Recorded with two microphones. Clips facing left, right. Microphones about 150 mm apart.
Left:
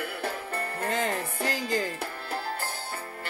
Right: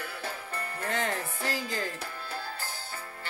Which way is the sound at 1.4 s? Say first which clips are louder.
Left 6 dB; centre (ahead or behind).